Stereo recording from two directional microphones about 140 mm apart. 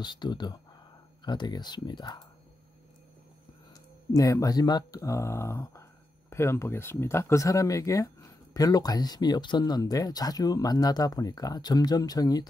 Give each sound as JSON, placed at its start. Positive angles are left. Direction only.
{"t": 0.0, "sound": "speech", "side_deg": 30}
{"t": 4.1, "sound": "speech", "side_deg": 25}